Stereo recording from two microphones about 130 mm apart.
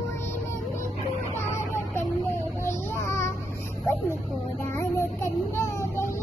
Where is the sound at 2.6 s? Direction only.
20° left (ahead or behind).